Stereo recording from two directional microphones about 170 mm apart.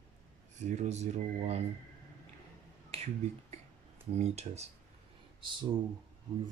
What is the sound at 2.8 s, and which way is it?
Finger snapping, 35° right (ahead or behind).